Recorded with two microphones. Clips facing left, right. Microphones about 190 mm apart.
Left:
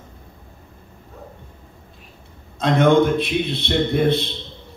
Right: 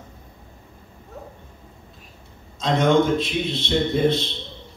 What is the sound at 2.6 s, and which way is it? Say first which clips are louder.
A man's voice: left 3 dB; 60° left (ahead or behind).